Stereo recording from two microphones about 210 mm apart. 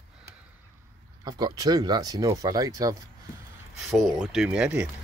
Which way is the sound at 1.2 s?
20° right (ahead or behind).